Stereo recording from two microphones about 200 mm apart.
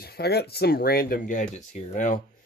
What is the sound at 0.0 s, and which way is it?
Speech, 55° left (ahead or behind).